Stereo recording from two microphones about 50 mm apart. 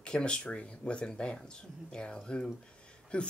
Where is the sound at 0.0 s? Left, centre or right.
Centre.